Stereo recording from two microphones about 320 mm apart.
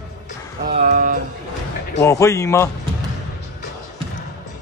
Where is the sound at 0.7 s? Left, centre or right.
Right.